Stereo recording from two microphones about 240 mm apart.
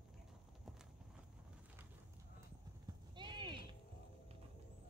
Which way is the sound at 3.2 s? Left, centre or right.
Centre.